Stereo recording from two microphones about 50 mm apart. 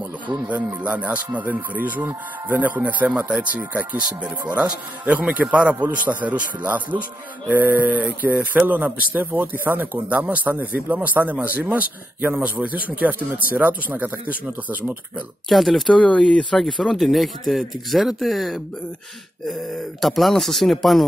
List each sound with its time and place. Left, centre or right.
0.8 s a man's voice: right
10.0 s a man's voice: right
15.4 s speech: centre
15.9 s speech: left
16.5 s speech: centre